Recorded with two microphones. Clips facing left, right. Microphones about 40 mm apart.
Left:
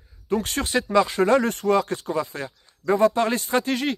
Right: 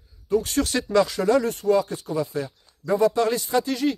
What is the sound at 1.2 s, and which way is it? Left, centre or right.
Speech, left.